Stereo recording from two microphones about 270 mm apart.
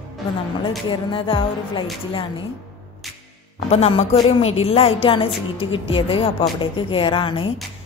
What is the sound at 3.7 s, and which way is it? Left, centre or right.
A woman's voice, left.